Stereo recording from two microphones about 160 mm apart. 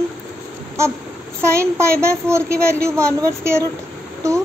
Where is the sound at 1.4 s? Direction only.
15° right (ahead or behind).